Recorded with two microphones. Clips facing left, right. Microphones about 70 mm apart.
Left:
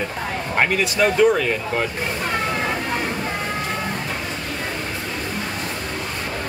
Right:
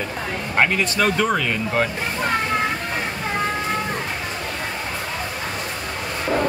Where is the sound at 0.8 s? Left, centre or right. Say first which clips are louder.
Left 2 dB; centre.